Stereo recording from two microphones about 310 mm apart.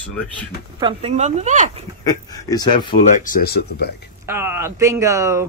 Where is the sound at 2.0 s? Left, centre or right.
Centre; by 3.9 s left.